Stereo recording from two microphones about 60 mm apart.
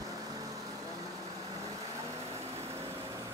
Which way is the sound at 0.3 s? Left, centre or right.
Right.